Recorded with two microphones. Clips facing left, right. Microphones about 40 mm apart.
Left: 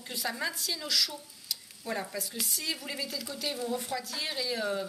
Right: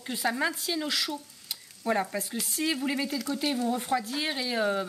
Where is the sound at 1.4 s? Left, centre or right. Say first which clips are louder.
Right 7 dB; right.